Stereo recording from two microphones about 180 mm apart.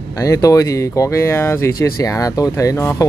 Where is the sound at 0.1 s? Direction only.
20° left (ahead or behind).